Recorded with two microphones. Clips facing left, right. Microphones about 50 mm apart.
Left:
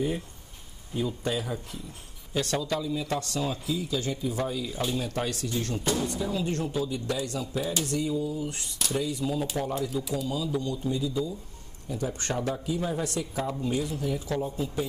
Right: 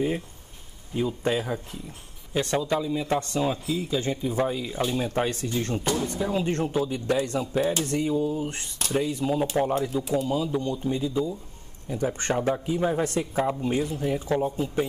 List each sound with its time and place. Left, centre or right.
1.2 s speech: right
2.3 s speech: right